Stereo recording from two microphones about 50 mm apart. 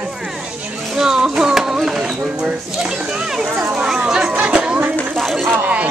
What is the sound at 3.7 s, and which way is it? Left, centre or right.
Chatter, centre.